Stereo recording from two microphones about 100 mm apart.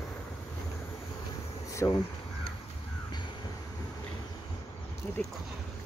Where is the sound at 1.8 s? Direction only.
25° left (ahead or behind).